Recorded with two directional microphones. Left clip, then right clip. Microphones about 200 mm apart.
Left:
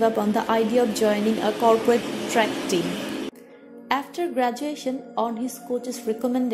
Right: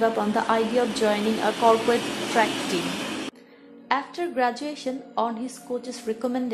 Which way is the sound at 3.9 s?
25° left (ahead or behind).